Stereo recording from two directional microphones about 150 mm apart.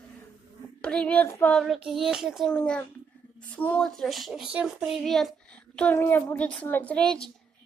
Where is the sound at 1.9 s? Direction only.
Centre (ahead or behind).